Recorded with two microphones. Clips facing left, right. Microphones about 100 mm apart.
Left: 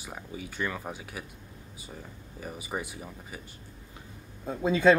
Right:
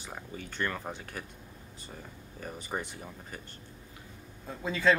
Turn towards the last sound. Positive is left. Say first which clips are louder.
# left 5 dB
turn(degrees=20)  # may be behind; listen again after turning